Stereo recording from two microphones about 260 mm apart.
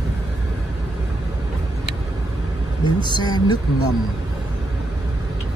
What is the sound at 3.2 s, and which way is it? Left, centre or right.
Speech, centre.